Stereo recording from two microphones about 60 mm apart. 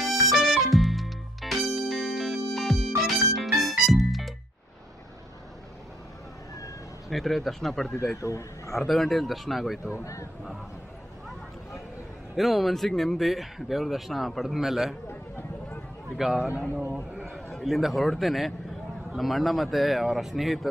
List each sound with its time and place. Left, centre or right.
0.0 s music: centre
7.1 s speech: centre
8.2 s speech: left
8.7 s speech: centre
9.9 s speech: left
12.4 s speech: centre
15.0 s a sound: left
16.2 s a man's voice: centre
17.6 s speech: centre